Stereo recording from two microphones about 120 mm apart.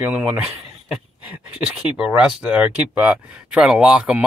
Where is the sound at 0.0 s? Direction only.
10° right (ahead or behind).